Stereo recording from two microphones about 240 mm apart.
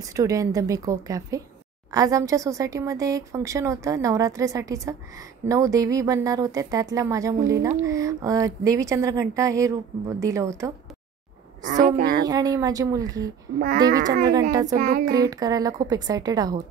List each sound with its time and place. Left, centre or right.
0.0 s speech: centre
11.6 s a woman's voice: right
12.3 s speech: centre
13.6 s a woman's voice: right
14.5 s speech: centre
14.8 s a woman's voice: right
15.0 s speech: centre